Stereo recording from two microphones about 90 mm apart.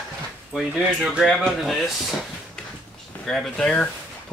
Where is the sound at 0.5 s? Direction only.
5° right (ahead or behind).